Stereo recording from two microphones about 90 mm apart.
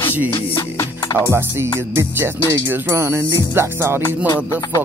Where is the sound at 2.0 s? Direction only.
30° right (ahead or behind).